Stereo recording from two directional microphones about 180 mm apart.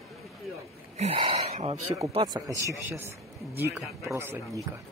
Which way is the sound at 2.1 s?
25° right (ahead or behind).